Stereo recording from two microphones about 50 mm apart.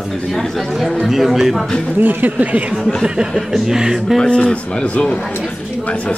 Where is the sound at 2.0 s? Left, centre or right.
Right.